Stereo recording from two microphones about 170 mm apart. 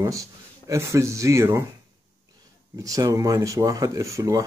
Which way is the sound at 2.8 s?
20° right (ahead or behind).